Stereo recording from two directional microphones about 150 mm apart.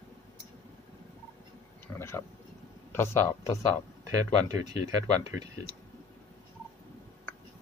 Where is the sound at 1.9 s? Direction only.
15° left (ahead or behind).